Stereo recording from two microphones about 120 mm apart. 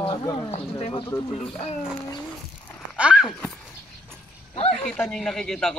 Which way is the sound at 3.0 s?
5° right (ahead or behind).